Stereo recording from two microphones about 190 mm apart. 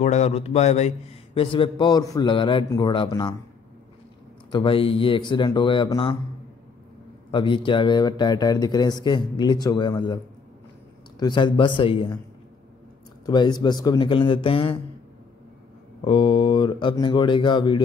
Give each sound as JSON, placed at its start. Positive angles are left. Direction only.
{"t": 0.0, "sound": "speech", "side_deg": 35}
{"t": 4.5, "sound": "speech", "side_deg": 25}
{"t": 7.2, "sound": "speech", "side_deg": 25}
{"t": 13.2, "sound": "speech", "side_deg": 20}
{"t": 16.0, "sound": "speech", "side_deg": 25}